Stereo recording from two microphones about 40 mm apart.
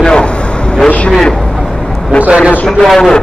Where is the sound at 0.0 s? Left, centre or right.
Left.